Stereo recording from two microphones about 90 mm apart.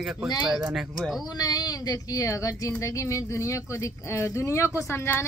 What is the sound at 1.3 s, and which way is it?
Speech, 45° left (ahead or behind).